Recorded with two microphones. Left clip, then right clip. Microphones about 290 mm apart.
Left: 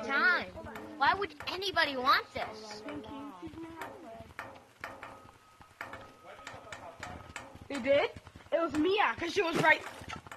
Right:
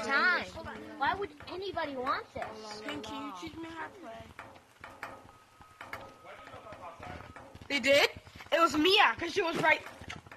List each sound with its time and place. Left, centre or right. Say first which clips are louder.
0.1 s music: even; centre
0.9 s speech: left 3 dB; left
2.4 s speech: right 1 dB; centre
3.0 s speech: right 4 dB; right
7.8 s a sound: right 2 dB; right
9.1 s speech: left 1 dB; centre